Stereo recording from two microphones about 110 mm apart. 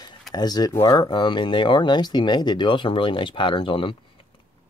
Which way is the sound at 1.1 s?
50° left (ahead or behind).